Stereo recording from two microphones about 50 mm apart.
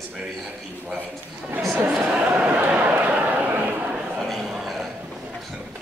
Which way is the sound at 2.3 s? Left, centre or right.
Right.